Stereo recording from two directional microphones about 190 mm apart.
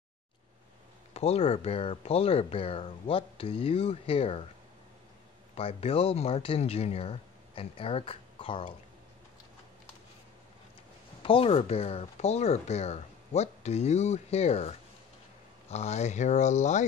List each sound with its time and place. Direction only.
1.1 s speech: 35° left (ahead or behind)
5.5 s speech: 30° left (ahead or behind)
11.2 s speech: 30° left (ahead or behind)